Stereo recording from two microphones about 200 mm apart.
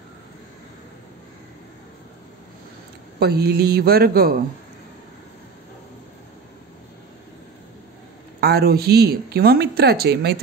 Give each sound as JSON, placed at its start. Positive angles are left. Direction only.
{"t": 3.2, "sound": "speech", "side_deg": -55}
{"t": 8.4, "sound": "speech", "side_deg": -50}